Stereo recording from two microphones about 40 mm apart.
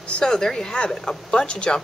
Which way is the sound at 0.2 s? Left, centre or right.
Centre.